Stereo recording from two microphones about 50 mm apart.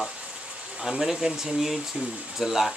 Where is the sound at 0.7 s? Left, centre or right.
Centre.